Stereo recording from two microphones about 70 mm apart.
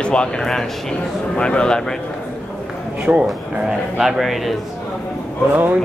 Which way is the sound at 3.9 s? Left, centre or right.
Centre.